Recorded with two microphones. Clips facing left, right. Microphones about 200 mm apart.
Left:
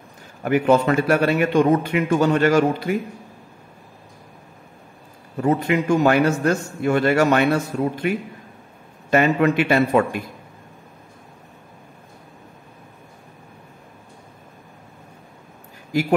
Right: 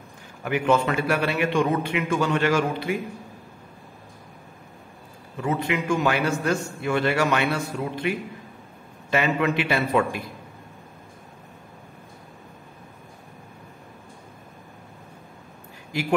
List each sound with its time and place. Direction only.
0.4 s a man's voice: 40° left (ahead or behind)
5.4 s a man's voice: 40° left (ahead or behind)
9.1 s a man's voice: 45° left (ahead or behind)